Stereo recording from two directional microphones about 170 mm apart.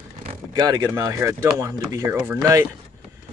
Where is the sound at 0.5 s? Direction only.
25° right (ahead or behind).